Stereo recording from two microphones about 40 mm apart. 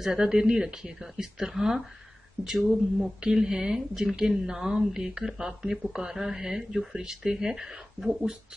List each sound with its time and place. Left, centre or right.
0.0 s speech: centre
3.2 s speech: centre